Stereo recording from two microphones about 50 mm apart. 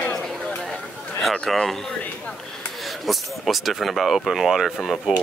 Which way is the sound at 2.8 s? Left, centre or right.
Centre.